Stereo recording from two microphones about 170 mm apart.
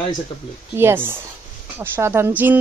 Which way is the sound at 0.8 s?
15° right (ahead or behind).